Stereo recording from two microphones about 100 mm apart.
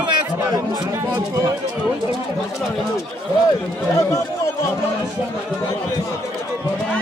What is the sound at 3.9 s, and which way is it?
Speech, 30° left (ahead or behind).